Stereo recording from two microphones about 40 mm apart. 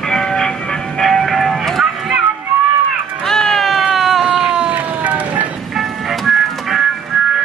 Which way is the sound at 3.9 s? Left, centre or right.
Centre.